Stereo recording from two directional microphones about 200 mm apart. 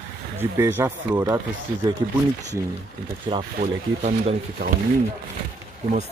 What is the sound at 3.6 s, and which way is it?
Speech, 40° right (ahead or behind).